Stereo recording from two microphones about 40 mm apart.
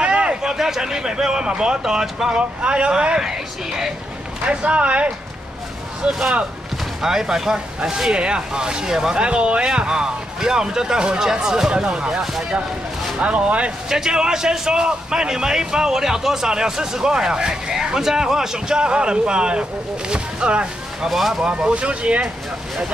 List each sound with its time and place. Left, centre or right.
0.0 s a man's voice: right
2.6 s speech: right
3.2 s a man's voice: centre
4.5 s speech: right
6.0 s a man's voice: centre
8.1 s a man's voice: right
13.2 s speech: right
13.8 s a man's voice: centre
21.1 s speech: centre
21.5 s speech: right